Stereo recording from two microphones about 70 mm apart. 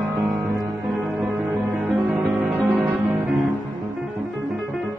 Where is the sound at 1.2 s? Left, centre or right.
Right.